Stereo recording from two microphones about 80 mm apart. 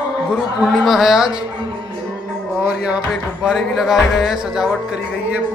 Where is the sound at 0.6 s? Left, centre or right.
Centre.